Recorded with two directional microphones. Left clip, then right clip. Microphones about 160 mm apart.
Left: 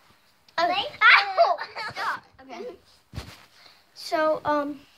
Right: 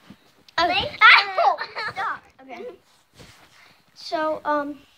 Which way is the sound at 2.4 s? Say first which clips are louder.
Right 1 dB; 30° left (ahead or behind).